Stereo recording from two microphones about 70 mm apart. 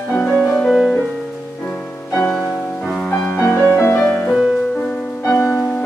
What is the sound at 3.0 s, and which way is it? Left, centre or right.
Music, centre.